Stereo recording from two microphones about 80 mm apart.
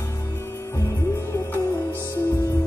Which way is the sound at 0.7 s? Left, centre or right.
Left.